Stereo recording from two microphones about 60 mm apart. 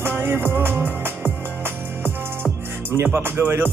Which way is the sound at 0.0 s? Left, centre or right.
Right.